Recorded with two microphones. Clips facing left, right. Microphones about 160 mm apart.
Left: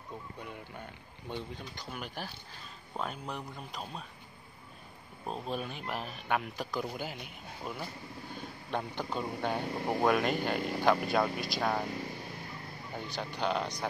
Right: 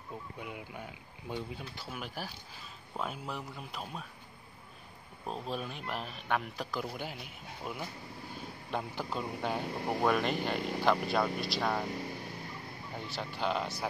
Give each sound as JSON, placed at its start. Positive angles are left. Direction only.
{"t": 0.4, "sound": "speech", "side_deg": -10}
{"t": 5.2, "sound": "speech", "side_deg": 0}
{"t": 12.9, "sound": "speech", "side_deg": 0}